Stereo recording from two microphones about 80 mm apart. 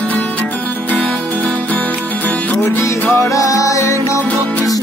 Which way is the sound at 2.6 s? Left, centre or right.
Left.